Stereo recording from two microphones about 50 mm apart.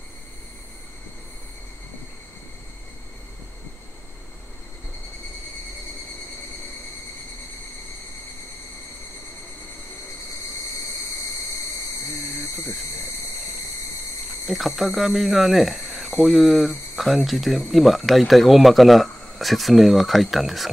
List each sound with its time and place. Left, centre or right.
14.4 s speech: centre